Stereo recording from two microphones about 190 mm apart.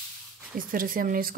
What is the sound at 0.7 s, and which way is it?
Speech, 50° right (ahead or behind).